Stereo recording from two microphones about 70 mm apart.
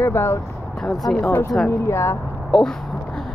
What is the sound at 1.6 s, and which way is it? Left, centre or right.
Speech, left.